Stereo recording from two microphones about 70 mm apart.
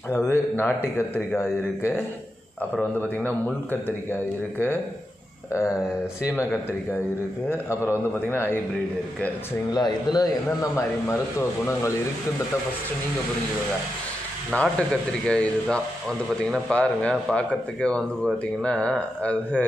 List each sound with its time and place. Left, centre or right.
0.1 s speech: left
3.2 s speech: centre
3.7 s speech: left
5.5 s speech: left
7.7 s speech: left
9.8 s a man's voice: left
11.1 s speech: left
14.5 s speech: centre